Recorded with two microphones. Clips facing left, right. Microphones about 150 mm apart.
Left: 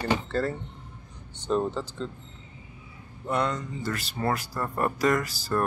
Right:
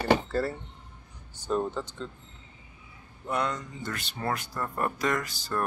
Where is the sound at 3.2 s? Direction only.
Centre (ahead or behind).